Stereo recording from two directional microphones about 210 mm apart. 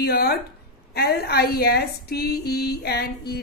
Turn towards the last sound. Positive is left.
turn(degrees=50)  # may be behind; listen again after turning